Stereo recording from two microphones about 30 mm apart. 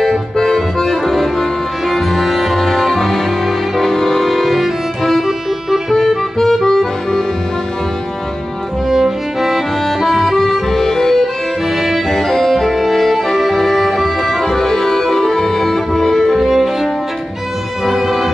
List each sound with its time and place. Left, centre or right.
0.7 s music: centre
5.9 s music: centre
8.8 s music: centre
10.7 s music: centre
11.7 s music: centre
12.1 s music: centre
12.4 s music: centre
16.4 s music: centre
17.8 s music: centre